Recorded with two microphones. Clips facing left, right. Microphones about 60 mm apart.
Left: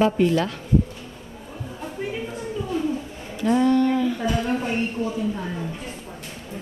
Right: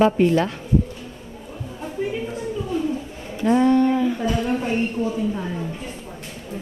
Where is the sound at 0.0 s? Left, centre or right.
Right.